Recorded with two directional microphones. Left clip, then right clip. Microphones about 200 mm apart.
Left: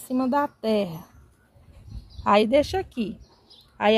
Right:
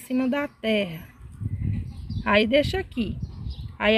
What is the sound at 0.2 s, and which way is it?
Speech, 5° left (ahead or behind).